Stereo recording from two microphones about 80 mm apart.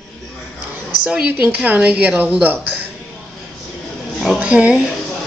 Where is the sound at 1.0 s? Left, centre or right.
Centre.